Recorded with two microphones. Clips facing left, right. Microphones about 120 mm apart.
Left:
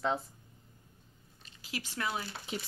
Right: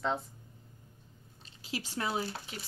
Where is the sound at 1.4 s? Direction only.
30° right (ahead or behind).